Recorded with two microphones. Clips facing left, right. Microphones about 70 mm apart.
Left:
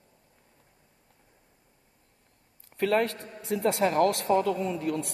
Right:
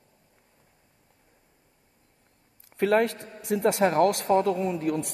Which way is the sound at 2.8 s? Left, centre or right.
Right.